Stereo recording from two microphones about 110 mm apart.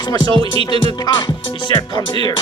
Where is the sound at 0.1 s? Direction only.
40° left (ahead or behind).